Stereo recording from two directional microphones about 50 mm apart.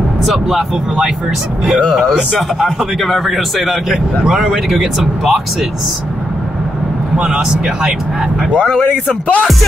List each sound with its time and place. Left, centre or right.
0.2 s speech: centre
2.3 s speech: centre
7.2 s speech: centre
8.6 s speech: left